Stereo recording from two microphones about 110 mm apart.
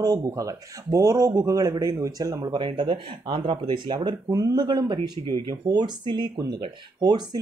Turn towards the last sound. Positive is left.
turn(degrees=-40)  # may be behind; listen again after turning